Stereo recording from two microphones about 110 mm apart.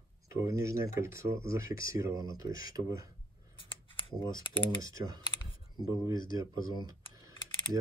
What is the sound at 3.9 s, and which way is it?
Speech, 45° left (ahead or behind).